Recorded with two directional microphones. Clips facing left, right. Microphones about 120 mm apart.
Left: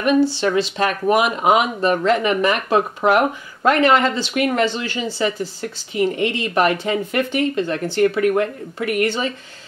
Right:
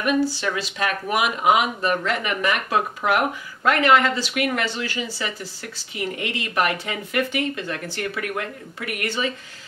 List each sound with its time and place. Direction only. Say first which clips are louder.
0.0 s speech: left 5 dB; 25° left (ahead or behind)